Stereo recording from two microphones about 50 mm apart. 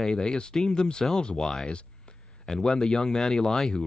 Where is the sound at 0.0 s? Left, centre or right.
Centre.